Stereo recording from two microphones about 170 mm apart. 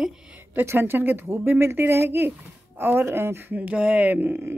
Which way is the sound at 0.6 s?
15° right (ahead or behind).